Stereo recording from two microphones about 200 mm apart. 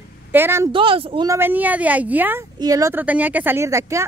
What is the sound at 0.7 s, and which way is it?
Speech, 25° right (ahead or behind).